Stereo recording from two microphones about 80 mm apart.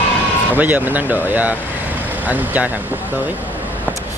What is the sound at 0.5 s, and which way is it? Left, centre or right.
Speech, right.